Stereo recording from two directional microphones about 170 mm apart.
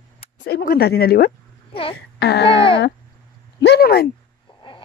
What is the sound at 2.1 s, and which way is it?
Speech, 80° left.